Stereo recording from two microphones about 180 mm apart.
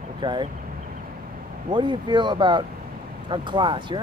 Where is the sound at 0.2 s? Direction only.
25° right (ahead or behind).